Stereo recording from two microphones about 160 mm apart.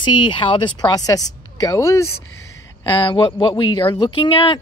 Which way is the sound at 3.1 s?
30° left (ahead or behind).